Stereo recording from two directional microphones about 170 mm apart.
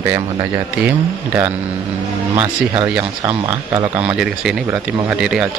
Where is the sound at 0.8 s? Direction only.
10° right (ahead or behind).